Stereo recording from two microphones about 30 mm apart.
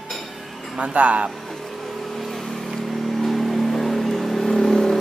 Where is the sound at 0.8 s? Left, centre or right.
Right.